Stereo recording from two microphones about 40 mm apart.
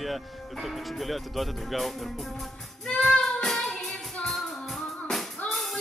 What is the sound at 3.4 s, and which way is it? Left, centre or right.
Music, centre.